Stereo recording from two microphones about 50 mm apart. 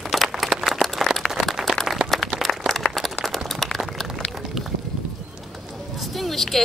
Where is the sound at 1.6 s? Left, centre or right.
Centre.